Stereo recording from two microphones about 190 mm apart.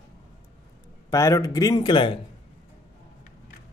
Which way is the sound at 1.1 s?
15° left (ahead or behind).